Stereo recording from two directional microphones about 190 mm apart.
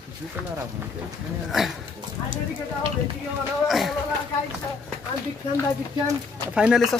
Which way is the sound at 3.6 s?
Centre (ahead or behind).